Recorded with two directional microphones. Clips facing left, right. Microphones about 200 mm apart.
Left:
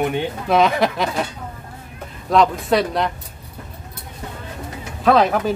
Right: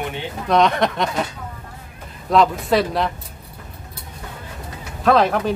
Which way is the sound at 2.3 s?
Centre (ahead or behind).